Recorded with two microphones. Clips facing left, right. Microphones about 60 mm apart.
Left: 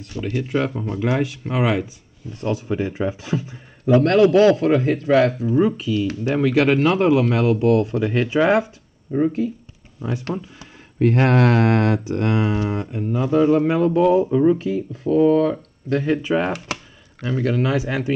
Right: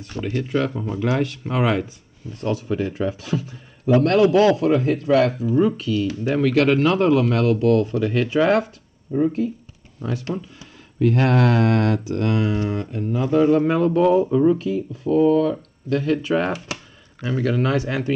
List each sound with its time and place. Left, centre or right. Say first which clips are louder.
0.2 s speech: even; centre
4.0 s speech: left 2 dB; left
5.5 s speech: left 1 dB; centre
9.1 s speech: left 1 dB; left
10.0 s speech: left 1 dB; centre
11.0 s speech: left 1 dB; left
13.1 s speech: even; centre
15.0 s speech: left 1 dB; left; by 18.1 s centre